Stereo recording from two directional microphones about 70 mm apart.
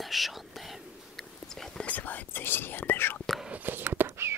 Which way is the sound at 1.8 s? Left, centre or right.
Left.